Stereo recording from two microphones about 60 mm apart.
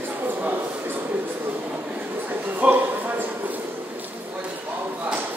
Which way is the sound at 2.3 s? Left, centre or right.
Right.